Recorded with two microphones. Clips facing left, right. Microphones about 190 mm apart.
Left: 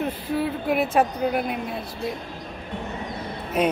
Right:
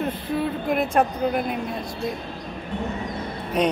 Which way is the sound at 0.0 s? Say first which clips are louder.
Even; 5° left (ahead or behind).